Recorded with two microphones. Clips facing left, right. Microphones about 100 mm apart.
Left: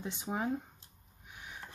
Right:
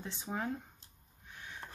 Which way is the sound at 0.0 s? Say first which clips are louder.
Left 3 dB; 15° left (ahead or behind).